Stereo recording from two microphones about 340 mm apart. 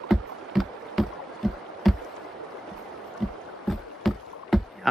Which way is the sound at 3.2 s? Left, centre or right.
Centre.